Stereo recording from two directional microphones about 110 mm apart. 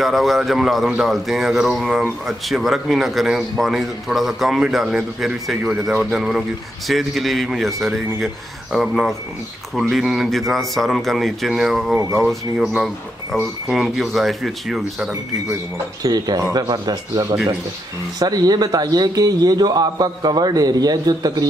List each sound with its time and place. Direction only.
0.0 s speech: centre (ahead or behind)
16.0 s a man's voice: 35° right (ahead or behind)